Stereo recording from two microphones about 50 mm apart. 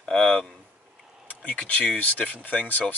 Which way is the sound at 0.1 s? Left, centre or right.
Left.